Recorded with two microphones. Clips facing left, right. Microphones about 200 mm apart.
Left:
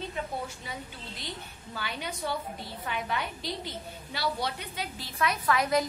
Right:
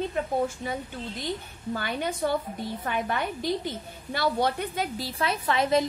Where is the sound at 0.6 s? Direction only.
50° right (ahead or behind).